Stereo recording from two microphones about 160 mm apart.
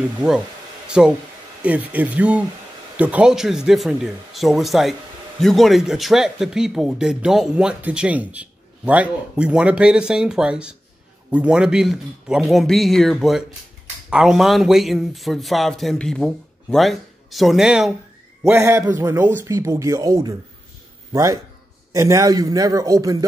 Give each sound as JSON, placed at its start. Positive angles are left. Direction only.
{"t": 0.8, "sound": "speech", "side_deg": -5}
{"t": 18.4, "sound": "a man's voice", "side_deg": -15}